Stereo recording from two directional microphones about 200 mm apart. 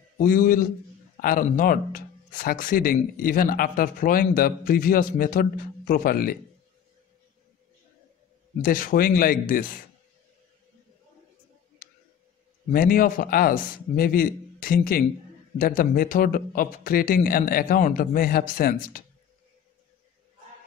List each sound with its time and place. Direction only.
0.2 s speech: 45° left (ahead or behind)
8.5 s speech: 45° left (ahead or behind)
12.7 s speech: 45° left (ahead or behind)